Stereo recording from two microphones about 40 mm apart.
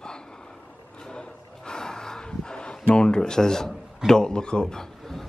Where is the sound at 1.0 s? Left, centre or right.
Left.